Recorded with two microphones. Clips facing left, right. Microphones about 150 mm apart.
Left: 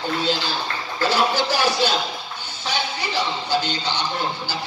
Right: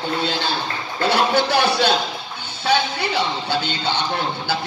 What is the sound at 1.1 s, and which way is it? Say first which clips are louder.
Speech: right 4 dB; 60° right (ahead or behind).